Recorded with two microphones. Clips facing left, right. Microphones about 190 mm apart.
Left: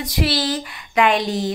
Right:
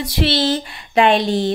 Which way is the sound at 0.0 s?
30° right (ahead or behind).